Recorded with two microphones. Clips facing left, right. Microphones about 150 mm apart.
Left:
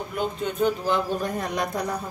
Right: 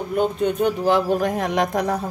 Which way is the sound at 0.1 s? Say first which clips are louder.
Right 9 dB; 75° right (ahead or behind).